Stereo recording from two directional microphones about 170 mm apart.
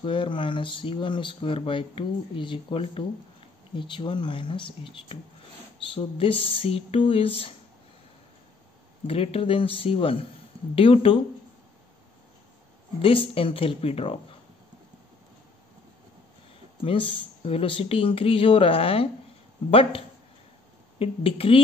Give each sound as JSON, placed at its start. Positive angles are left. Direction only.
{"t": 0.0, "sound": "speech", "side_deg": 30}
{"t": 9.0, "sound": "speech", "side_deg": 35}
{"t": 13.0, "sound": "speech", "side_deg": 30}
{"t": 16.8, "sound": "speech", "side_deg": 30}